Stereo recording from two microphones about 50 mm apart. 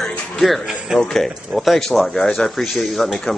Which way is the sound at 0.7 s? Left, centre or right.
Centre.